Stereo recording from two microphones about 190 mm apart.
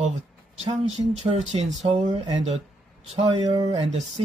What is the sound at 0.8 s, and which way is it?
Speech, 35° right (ahead or behind).